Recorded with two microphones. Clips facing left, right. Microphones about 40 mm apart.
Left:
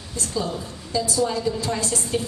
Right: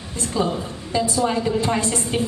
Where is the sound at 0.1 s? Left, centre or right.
Right.